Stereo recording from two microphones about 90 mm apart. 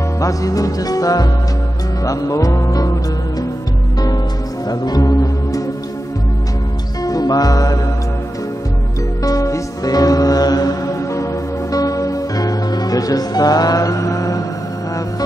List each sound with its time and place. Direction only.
0.2 s music: 40° left (ahead or behind)
4.6 s speech: 45° left (ahead or behind)
7.0 s music: 45° left (ahead or behind)
9.2 s music: 40° left (ahead or behind)